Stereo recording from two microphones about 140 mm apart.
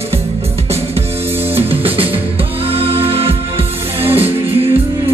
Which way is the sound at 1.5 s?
45° right (ahead or behind).